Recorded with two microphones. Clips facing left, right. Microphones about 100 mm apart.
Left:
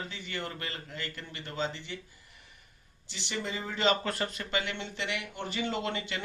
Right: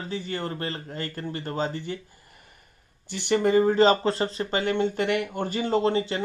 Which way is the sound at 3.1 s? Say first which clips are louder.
Right 15 dB; 55° right (ahead or behind).